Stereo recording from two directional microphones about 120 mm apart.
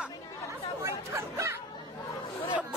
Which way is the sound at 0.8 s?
25° right (ahead or behind).